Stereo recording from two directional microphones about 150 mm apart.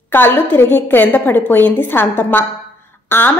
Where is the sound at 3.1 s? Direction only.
15° left (ahead or behind).